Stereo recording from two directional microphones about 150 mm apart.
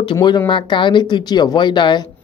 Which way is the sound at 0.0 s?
30° left (ahead or behind).